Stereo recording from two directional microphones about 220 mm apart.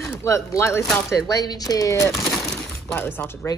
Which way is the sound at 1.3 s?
15° left (ahead or behind).